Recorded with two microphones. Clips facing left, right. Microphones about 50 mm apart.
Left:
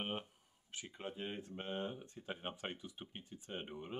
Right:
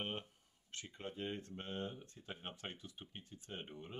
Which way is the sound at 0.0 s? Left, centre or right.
Centre.